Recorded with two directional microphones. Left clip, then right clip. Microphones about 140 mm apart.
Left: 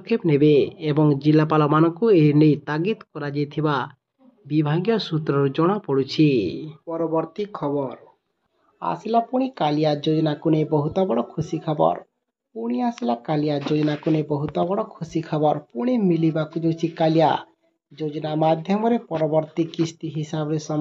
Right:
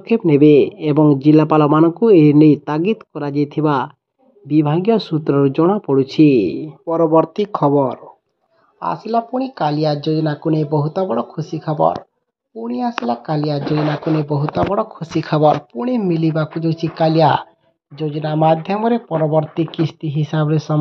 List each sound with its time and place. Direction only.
0.0 s speech: 25° right (ahead or behind)
6.9 s speech: 50° right (ahead or behind)
9.3 s speech: 10° right (ahead or behind)